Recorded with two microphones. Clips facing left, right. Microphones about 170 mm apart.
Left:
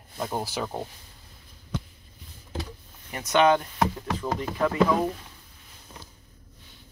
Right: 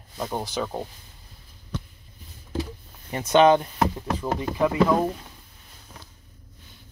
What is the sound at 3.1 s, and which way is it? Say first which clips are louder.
Speech: right 4 dB; 25° right (ahead or behind).